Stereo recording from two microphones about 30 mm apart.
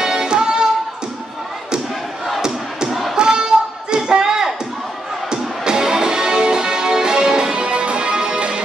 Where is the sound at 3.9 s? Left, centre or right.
Right.